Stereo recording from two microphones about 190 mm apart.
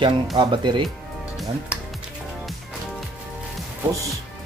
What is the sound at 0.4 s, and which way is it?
Speech, 25° right (ahead or behind).